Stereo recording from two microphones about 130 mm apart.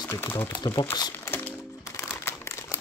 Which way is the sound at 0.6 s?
30° left (ahead or behind).